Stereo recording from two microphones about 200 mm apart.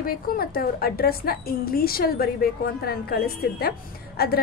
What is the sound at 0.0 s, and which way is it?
A woman's voice, 45° left (ahead or behind).